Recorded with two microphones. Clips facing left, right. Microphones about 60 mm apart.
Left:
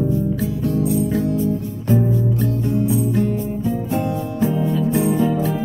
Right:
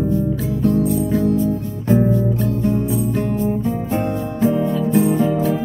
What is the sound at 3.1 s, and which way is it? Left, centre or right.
Music, right.